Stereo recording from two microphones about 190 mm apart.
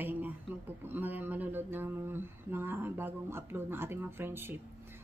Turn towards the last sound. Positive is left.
turn(degrees=-10)  # may be behind; listen again after turning